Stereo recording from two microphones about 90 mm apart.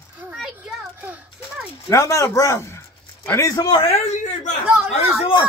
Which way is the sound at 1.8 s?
40° left (ahead or behind).